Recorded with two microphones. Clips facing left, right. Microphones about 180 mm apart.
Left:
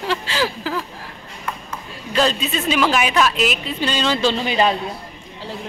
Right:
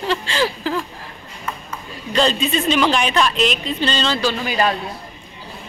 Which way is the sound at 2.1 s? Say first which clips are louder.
Right 1 dB; 5° left (ahead or behind).